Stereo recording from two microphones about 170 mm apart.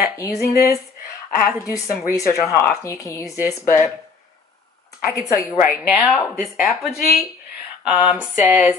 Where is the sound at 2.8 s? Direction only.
20° left (ahead or behind).